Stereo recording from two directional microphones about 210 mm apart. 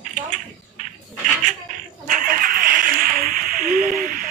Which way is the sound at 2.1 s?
40° right (ahead or behind).